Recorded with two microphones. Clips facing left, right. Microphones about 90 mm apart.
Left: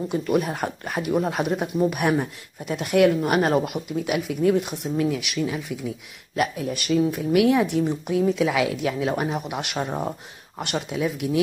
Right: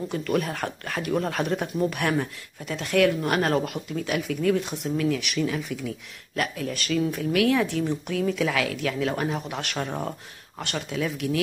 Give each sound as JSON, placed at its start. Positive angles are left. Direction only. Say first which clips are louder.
{"t": 0.1, "sound": "speech", "louder": "left 3 dB", "side_deg": 15}
{"t": 5.2, "sound": "speech", "louder": "even", "side_deg": 5}